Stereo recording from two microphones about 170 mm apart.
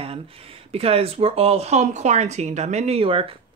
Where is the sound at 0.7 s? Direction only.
35° right (ahead or behind).